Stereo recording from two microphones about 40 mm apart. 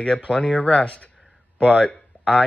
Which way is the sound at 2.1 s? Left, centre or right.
Left.